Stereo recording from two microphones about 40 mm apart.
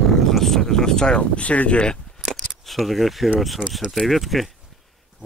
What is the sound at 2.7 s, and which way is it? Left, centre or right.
Speech, centre.